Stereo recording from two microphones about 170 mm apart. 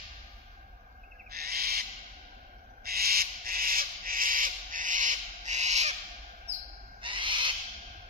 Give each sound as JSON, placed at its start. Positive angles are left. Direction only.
{"t": 1.3, "sound": "owl", "side_deg": -65}
{"t": 7.0, "sound": "owl", "side_deg": -30}